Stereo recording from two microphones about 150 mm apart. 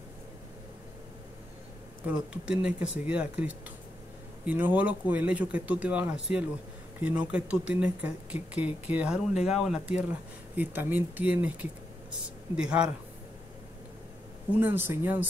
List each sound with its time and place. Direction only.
2.0 s speech: 5° right (ahead or behind)
12.5 s speech: 5° right (ahead or behind)
14.6 s speech: 15° right (ahead or behind)